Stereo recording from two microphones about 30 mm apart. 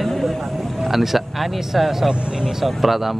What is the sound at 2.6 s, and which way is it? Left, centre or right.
Speech, centre.